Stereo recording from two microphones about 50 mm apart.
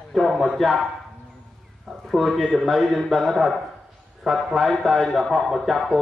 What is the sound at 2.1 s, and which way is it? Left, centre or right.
Speech, centre.